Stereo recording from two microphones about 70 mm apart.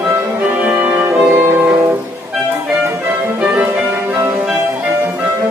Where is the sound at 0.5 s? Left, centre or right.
Centre.